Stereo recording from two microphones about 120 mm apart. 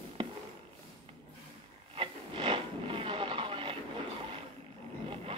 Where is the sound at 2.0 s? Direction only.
45° right (ahead or behind).